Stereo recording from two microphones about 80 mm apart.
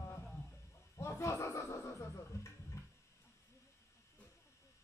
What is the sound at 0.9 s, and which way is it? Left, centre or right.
Music, left.